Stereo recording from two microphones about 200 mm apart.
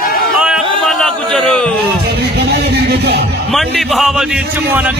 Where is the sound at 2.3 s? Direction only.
55° right (ahead or behind).